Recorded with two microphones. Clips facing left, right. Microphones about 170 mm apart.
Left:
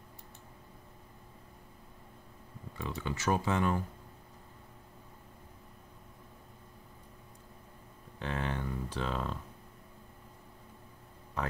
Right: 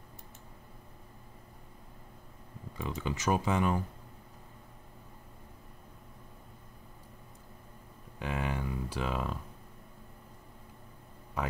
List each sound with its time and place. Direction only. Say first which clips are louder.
2.8 s speech: right 1 dB; 15° right (ahead or behind)
8.2 s speech: right 1 dB; 10° right (ahead or behind)